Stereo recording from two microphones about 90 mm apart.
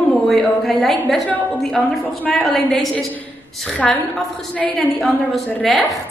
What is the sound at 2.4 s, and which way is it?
A woman's voice, 5° left (ahead or behind).